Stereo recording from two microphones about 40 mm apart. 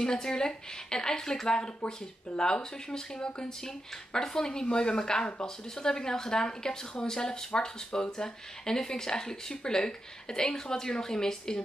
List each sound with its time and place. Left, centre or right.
0.0 s speech: centre